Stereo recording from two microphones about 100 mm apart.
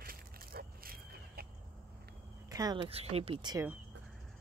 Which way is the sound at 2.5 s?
40° right (ahead or behind).